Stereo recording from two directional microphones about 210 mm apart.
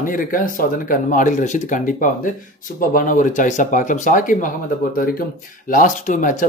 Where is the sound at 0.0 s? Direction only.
40° left (ahead or behind).